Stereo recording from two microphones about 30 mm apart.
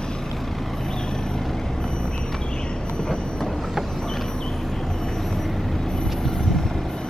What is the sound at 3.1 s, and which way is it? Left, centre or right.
Vehicle, left.